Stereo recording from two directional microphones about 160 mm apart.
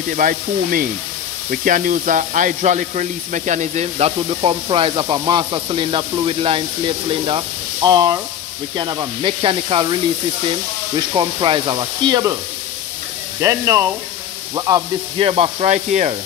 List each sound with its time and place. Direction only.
0.1 s speech: 55° right (ahead or behind); by 6.6 s 35° right (ahead or behind)
7.1 s frying: 35° right (ahead or behind)
9.2 s speech: 30° right (ahead or behind)
11.1 s frying: 30° right (ahead or behind)
13.4 s speech: 15° right (ahead or behind)
15.1 s speech: 35° right (ahead or behind)